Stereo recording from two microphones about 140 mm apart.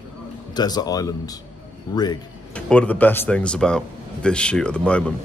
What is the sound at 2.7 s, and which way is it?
Speech, 10° left (ahead or behind).